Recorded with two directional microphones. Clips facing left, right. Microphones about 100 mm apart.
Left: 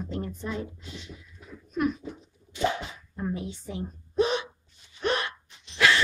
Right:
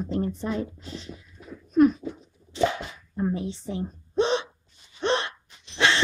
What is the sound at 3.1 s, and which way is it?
Speech, 30° right (ahead or behind).